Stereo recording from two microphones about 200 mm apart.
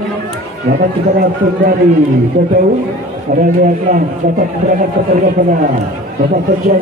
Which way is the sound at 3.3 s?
40° right (ahead or behind).